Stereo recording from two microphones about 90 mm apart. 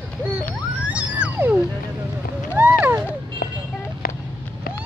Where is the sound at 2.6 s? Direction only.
20° right (ahead or behind).